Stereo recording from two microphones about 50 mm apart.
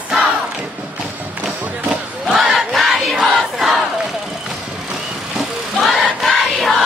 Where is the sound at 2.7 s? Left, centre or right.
Centre.